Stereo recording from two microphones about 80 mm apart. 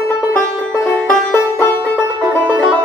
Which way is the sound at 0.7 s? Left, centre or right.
Centre.